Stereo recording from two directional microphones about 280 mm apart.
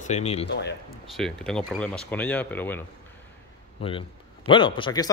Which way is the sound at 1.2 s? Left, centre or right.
Centre.